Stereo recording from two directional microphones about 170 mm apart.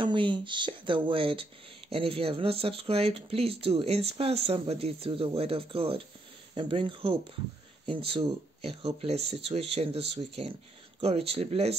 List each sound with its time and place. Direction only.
0.0 s speech: 30° right (ahead or behind)